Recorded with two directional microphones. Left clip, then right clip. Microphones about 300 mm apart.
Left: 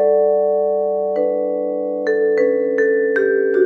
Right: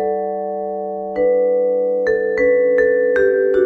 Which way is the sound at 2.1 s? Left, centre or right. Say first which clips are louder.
Left 3 dB; centre.